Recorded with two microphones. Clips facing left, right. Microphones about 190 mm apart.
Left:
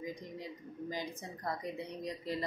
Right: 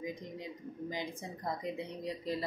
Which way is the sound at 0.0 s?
20° right (ahead or behind).